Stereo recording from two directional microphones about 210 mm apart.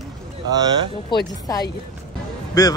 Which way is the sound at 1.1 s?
20° left (ahead or behind).